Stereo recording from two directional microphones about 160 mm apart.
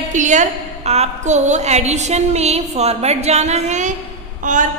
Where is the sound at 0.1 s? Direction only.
50° right (ahead or behind).